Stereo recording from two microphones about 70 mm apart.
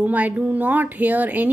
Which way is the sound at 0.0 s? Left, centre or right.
Right.